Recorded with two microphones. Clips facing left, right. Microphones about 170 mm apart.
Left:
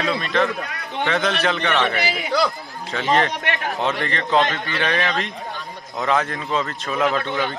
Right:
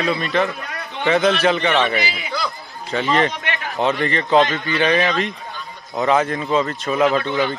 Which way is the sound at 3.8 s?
Centre (ahead or behind).